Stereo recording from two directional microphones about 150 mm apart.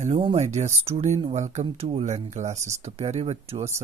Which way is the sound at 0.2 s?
45° right (ahead or behind).